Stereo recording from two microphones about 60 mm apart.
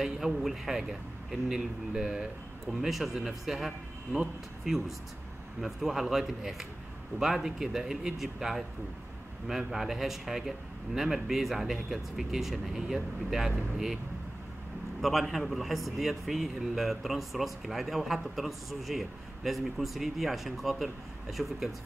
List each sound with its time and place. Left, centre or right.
0.0 s a man's voice: centre
15.0 s a man's voice: centre